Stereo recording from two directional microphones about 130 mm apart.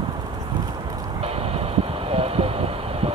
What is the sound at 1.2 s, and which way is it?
Vehicle, 50° right (ahead or behind).